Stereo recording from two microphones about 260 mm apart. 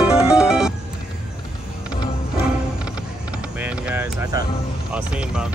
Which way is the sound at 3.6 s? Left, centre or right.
Centre.